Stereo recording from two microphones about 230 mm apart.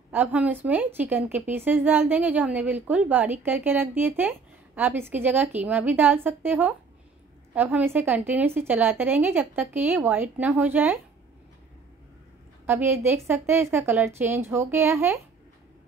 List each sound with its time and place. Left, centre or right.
0.1 s a woman's voice: centre
12.6 s a woman's voice: centre